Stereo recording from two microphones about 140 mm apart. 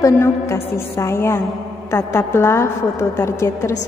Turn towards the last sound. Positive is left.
turn(degrees=20)  # may be behind; listen again after turning